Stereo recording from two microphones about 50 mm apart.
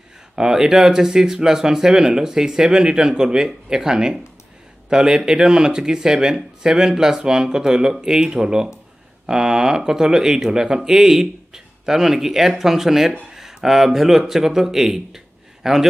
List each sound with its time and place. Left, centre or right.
0.4 s a man's voice: centre